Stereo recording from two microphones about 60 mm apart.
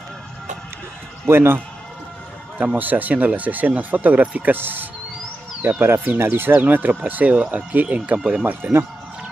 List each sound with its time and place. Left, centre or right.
1.2 s speech: right
2.6 s speech: right
8.5 s speech: right